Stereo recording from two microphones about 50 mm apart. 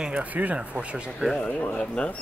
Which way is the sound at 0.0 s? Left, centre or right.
Right.